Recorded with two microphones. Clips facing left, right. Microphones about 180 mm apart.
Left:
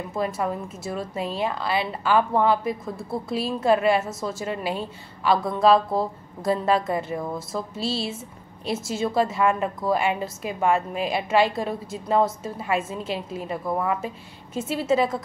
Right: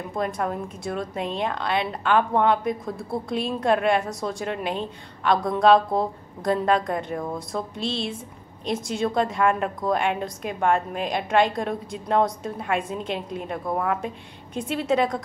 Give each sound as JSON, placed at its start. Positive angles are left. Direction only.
{"t": 0.1, "sound": "a woman's voice", "side_deg": 5}